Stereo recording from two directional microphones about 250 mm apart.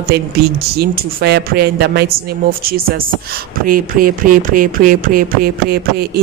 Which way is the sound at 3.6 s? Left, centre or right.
Right.